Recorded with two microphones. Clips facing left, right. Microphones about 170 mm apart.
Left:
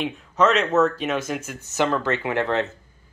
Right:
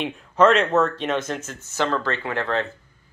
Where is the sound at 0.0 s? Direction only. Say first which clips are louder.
Right 3 dB; centre (ahead or behind).